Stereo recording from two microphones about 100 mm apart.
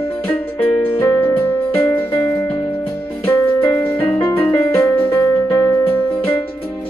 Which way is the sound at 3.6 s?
25° left (ahead or behind).